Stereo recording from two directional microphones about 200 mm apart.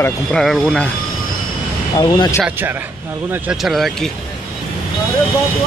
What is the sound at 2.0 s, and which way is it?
Speech, 20° left (ahead or behind).